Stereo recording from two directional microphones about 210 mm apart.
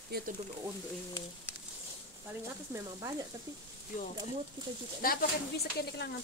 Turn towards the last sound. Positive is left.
turn(degrees=50)  # may be behind; listen again after turning